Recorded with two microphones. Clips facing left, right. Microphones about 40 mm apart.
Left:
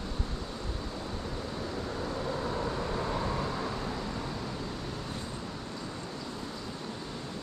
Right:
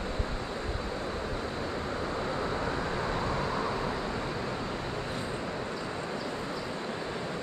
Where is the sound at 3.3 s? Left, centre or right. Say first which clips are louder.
Right 3 dB; right.